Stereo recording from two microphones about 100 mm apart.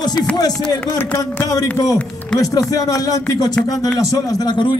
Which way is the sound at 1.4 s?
35° left (ahead or behind).